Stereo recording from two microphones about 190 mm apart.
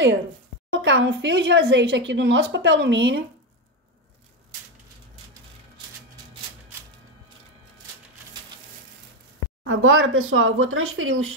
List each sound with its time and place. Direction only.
0.7 s a woman's voice: 70° right (ahead or behind)
9.7 s speech: 90° right